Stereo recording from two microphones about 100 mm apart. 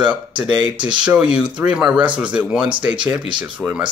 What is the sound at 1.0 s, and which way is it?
Speech, 10° right (ahead or behind).